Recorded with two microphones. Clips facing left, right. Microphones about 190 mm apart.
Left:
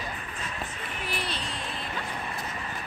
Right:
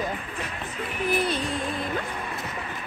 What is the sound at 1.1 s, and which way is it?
Music, 50° right (ahead or behind).